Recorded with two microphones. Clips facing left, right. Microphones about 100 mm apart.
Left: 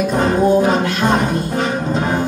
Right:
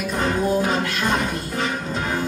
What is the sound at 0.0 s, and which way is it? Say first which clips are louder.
Music: left 7 dB; 30° left (ahead or behind).